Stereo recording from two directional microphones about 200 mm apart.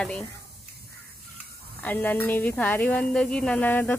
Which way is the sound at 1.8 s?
10° left (ahead or behind).